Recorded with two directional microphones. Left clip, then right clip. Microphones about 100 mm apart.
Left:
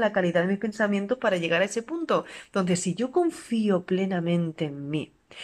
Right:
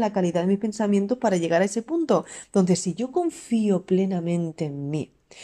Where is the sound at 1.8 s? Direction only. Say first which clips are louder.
Right 1 dB; 90° right.